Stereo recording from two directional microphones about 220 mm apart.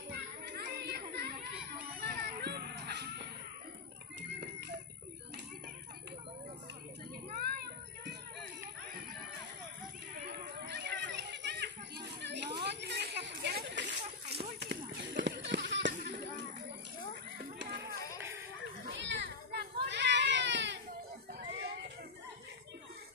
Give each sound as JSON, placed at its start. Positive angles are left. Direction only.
{"t": 0.1, "sound": "children playing", "side_deg": -50}
{"t": 1.1, "sound": "chatter", "side_deg": -45}
{"t": 2.0, "sound": "children playing", "side_deg": -45}
{"t": 4.3, "sound": "music", "side_deg": -50}
{"t": 7.3, "sound": "children playing", "side_deg": -45}
{"t": 10.2, "sound": "children playing", "side_deg": -50}
{"t": 14.6, "sound": "clip-clop", "side_deg": -50}
{"t": 17.4, "sound": "a sound", "side_deg": -50}
{"t": 18.1, "sound": "music", "side_deg": -10}
{"t": 18.9, "sound": "baby cry", "side_deg": -55}
{"t": 21.4, "sound": "a sound", "side_deg": -45}